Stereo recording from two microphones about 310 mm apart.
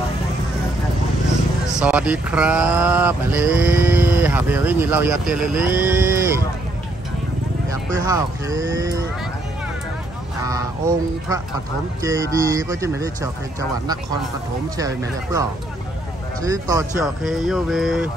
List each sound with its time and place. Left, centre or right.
1.7 s speech: centre
7.7 s speech: centre
12.0 s speech: centre
16.4 s speech: centre